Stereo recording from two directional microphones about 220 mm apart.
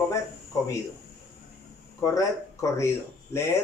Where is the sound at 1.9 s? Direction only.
15° left (ahead or behind).